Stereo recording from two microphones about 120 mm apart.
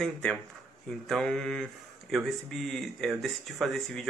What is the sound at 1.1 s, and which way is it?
Speech, 5° left (ahead or behind).